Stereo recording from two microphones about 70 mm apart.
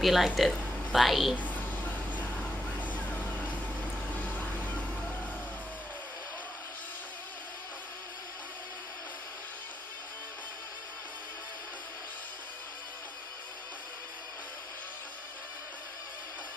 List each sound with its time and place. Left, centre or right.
0.0 s speech: centre
1.3 s a sound: left
2.8 s vehicle: left